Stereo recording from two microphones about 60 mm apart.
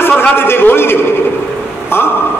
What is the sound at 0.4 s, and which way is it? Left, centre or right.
Speech, left.